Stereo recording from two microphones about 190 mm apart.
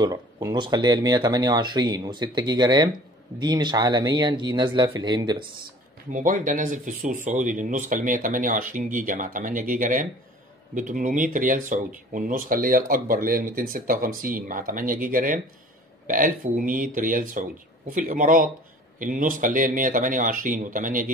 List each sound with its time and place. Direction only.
0.0 s speech: 20° right (ahead or behind)
6.1 s speech: 45° right (ahead or behind)